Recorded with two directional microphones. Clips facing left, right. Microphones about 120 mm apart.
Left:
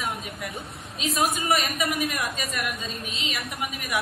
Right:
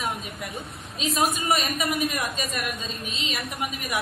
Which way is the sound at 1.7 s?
25° right (ahead or behind).